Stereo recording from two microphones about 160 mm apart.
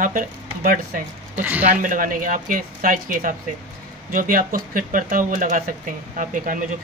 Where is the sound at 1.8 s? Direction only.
60° right (ahead or behind).